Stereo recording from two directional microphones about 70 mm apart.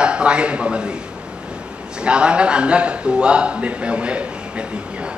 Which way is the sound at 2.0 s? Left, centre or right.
Centre.